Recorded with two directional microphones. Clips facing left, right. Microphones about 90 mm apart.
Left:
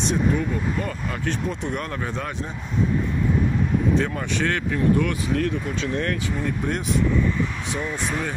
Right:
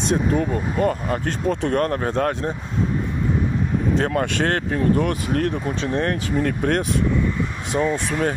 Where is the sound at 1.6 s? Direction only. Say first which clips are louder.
Right 7 dB; 55° right (ahead or behind).